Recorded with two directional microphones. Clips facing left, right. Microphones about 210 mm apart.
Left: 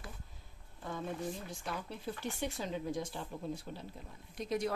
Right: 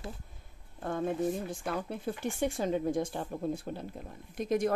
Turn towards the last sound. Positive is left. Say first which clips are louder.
# right 6 dB
turn(degrees=-50)  # may be behind; listen again after turning